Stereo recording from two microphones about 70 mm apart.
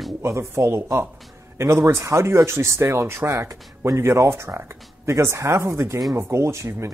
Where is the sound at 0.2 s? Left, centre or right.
Right.